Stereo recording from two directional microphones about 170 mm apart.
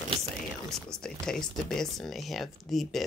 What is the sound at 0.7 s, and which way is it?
Speech, 5° left (ahead or behind).